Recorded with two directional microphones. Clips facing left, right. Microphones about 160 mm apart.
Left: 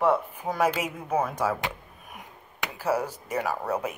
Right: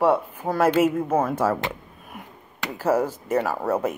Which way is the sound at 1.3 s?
15° left (ahead or behind).